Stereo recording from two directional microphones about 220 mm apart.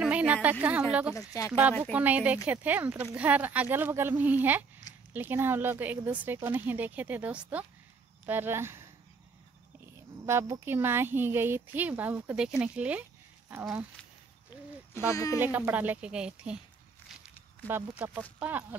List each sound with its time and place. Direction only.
0.0 s speech: 5° right (ahead or behind)
1.1 s speech: 15° left (ahead or behind)
1.5 s speech: 5° right (ahead or behind)
10.2 s speech: 10° right (ahead or behind)
14.5 s a sound: 20° left (ahead or behind)
15.0 s speech: 15° left (ahead or behind)
15.3 s speech: 10° right (ahead or behind)
17.6 s speech: 10° right (ahead or behind)